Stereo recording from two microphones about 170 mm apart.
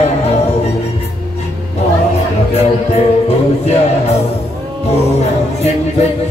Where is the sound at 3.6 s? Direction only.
40° left (ahead or behind).